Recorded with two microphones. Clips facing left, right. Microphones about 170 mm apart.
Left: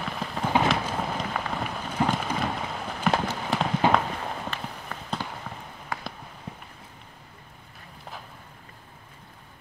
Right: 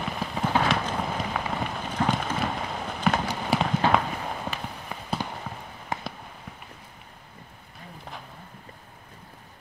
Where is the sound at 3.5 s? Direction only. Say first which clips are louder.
Right 2 dB; 10° right (ahead or behind).